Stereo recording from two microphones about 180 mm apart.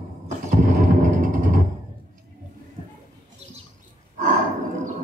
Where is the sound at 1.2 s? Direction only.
50° right (ahead or behind).